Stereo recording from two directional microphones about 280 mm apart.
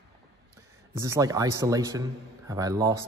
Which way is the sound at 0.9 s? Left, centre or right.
Centre.